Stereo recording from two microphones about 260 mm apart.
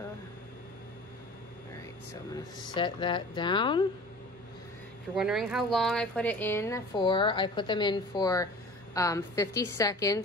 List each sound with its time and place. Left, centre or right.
2.6 s a woman's voice: centre
5.1 s a woman's voice: centre